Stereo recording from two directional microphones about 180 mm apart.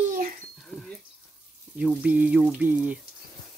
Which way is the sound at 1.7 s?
5° right (ahead or behind).